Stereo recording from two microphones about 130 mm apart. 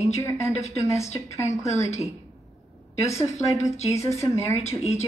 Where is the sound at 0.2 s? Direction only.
20° left (ahead or behind).